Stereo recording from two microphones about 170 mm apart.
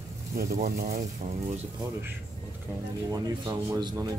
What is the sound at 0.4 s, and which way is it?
Speech, 55° right (ahead or behind).